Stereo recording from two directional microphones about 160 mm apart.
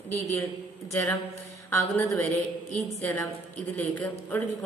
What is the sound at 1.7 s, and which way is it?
Speech, 15° left (ahead or behind).